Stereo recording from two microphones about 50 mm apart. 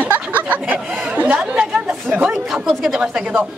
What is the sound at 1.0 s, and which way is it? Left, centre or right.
Chatter, right.